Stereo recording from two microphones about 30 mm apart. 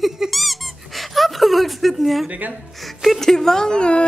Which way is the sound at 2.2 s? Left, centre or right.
Right.